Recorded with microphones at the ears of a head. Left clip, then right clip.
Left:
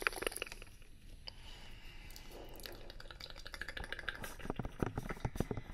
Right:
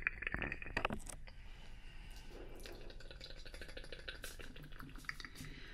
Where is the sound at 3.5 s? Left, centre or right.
Left.